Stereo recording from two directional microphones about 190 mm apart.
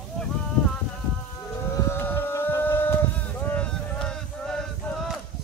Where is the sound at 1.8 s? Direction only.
10° left (ahead or behind).